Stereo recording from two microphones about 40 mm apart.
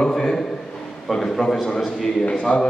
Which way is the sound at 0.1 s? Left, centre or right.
Centre.